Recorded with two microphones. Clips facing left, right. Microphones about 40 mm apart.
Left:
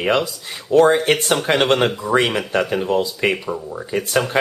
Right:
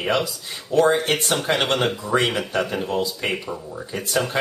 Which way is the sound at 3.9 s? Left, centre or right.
Left.